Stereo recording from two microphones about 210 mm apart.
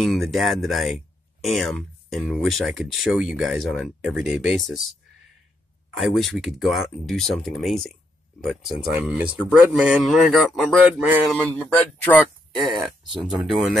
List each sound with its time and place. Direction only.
0.0 s speech: centre (ahead or behind)
5.9 s speech: centre (ahead or behind)
11.4 s speech: 5° left (ahead or behind)